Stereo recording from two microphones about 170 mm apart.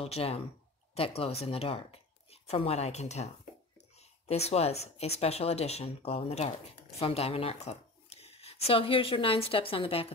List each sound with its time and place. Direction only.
0.0 s speech: 35° left (ahead or behind)
4.3 s speech: 40° left (ahead or behind)